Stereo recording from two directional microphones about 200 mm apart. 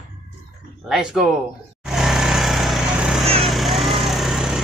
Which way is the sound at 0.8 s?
Centre (ahead or behind).